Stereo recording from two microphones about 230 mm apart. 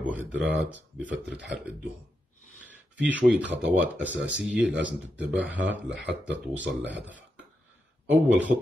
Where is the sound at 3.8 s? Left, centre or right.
Centre.